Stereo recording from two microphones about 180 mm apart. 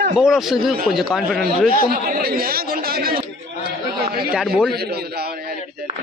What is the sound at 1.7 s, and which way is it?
Chatter, 55° right (ahead or behind).